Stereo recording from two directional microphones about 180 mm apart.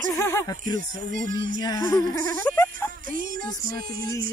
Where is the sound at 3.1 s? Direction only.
50° right (ahead or behind).